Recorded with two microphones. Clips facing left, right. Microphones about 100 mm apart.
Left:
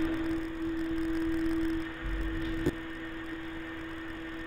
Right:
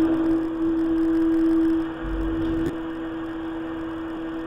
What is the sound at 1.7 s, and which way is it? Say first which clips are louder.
Vehicle: right 11 dB; 45° right (ahead or behind).